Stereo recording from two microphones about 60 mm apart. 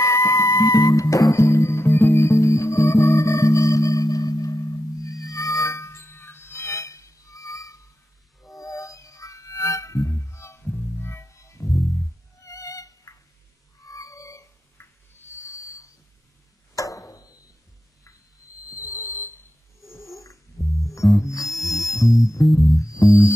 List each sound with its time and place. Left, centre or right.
0.0 s music: left
8.4 s music: centre
8.6 s music: left
12.4 s music: left
16.7 s a sound: left
19.8 s a sound: centre
20.6 s music: left
21.1 s music: left
21.5 s music: centre
22.8 s music: left